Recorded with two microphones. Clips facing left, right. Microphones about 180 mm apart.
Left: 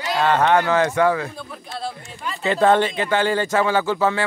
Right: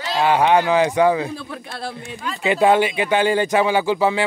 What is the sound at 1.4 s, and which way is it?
Speech, 70° right (ahead or behind).